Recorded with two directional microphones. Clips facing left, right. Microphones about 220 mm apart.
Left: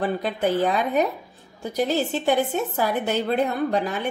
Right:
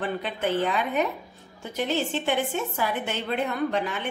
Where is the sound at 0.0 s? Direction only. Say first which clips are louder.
Left 5 dB; 40° left (ahead or behind).